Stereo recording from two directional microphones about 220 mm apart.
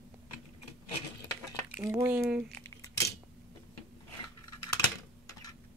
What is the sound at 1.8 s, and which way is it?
Speech, 10° right (ahead or behind).